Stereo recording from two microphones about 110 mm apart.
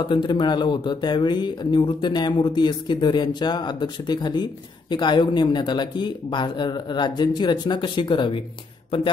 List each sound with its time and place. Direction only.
0.0 s speech: 45° left (ahead or behind)